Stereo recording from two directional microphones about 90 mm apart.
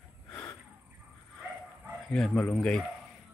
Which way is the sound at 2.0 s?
5° left (ahead or behind).